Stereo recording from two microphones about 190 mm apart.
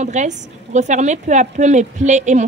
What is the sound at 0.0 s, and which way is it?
Speech, 40° right (ahead or behind).